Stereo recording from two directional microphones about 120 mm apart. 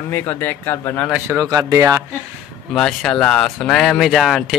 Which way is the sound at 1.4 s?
30° right (ahead or behind).